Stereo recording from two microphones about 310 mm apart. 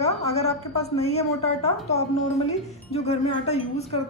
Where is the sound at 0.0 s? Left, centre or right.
Centre.